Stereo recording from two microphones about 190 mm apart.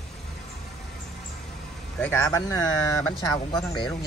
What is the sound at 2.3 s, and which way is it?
Speech, 20° left (ahead or behind).